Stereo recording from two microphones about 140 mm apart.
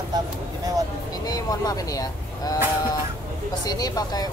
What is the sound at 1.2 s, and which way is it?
Speech, 25° left (ahead or behind).